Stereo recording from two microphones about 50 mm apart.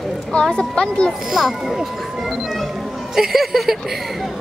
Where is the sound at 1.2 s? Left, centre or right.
Centre.